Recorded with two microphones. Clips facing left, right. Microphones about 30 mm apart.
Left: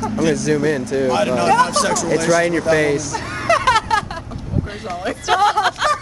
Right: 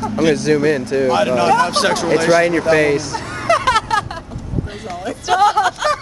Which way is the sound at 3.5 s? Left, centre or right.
Centre.